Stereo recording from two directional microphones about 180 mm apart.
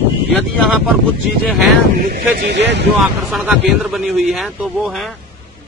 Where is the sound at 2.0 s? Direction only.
60° right (ahead or behind).